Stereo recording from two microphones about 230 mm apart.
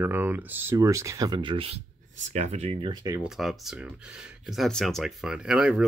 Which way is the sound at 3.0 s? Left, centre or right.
Centre.